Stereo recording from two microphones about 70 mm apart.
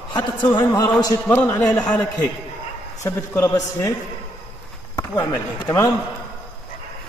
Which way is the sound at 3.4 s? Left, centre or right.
Left.